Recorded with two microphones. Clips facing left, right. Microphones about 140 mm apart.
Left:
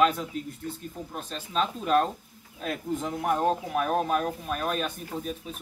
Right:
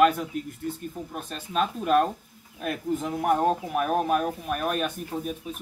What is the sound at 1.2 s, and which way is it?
Speech, 10° right (ahead or behind).